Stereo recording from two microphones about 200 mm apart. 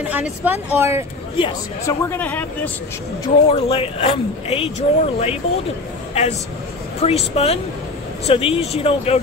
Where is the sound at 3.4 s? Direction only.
30° left (ahead or behind).